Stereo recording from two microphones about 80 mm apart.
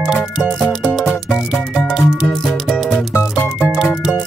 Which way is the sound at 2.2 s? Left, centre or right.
Centre.